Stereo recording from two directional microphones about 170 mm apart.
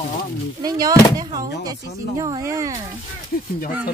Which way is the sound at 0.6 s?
25° right (ahead or behind).